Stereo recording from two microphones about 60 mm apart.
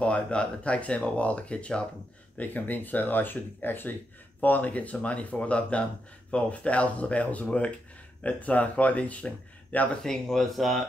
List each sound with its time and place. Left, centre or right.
0.0 s speech: centre
10.0 s speech: centre